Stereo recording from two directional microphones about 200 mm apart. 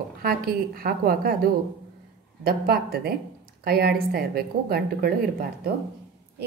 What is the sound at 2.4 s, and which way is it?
A woman's voice, 50° right (ahead or behind).